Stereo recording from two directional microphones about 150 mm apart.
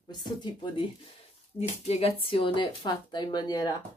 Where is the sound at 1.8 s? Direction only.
40° left (ahead or behind).